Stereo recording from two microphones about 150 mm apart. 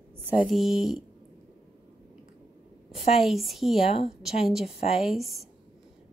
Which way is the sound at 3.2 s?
Centre (ahead or behind).